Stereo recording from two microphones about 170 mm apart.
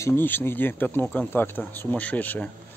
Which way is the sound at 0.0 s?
15° left (ahead or behind).